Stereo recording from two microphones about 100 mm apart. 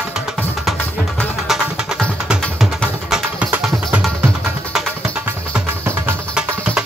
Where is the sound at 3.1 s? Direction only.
10° right (ahead or behind).